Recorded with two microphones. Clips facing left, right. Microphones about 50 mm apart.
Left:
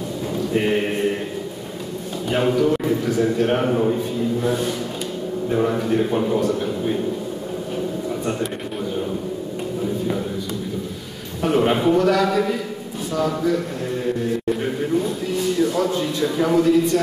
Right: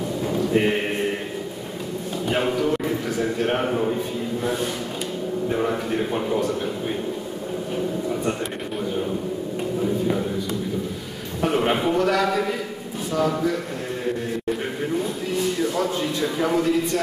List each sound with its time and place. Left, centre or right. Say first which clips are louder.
0.6 s mantra: left 3 dB; centre
2.2 s a man's voice: left 4 dB; centre
11.4 s a man's voice: left 3 dB; centre
14.6 s a sound: left 4 dB; centre